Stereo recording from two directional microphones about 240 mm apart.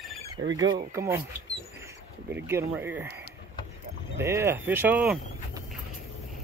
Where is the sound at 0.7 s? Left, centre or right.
Centre.